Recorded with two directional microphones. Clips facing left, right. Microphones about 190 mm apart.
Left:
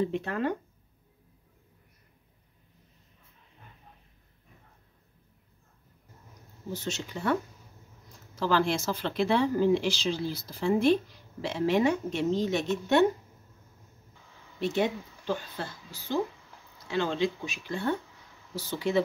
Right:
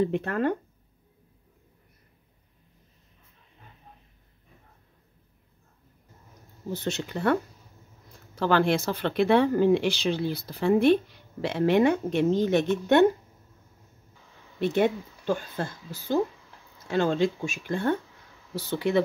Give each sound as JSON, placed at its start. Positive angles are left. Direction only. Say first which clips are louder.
{"t": 0.1, "sound": "speech", "louder": "right 4 dB", "side_deg": -55}
{"t": 6.8, "sound": "speech", "louder": "right 6 dB", "side_deg": -60}
{"t": 8.4, "sound": "speech", "louder": "right 4 dB", "side_deg": -60}
{"t": 14.6, "sound": "speech", "louder": "right 4 dB", "side_deg": -55}